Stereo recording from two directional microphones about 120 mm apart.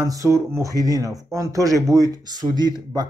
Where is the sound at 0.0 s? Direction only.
25° right (ahead or behind).